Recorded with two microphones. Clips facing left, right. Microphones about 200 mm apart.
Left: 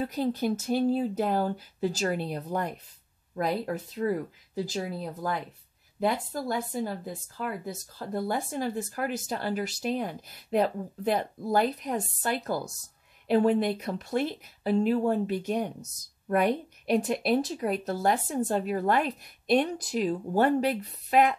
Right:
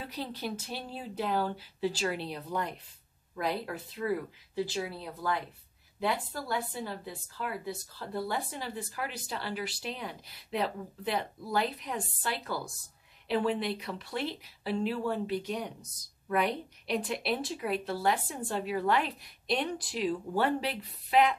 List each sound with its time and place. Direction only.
0.0 s speech: 45° left (ahead or behind)
6.4 s speech: 45° left (ahead or behind)